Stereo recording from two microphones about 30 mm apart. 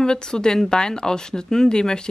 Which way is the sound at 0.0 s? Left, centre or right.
Left.